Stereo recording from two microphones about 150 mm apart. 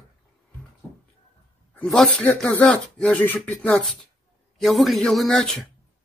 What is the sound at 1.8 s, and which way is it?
Speech, 5° left (ahead or behind).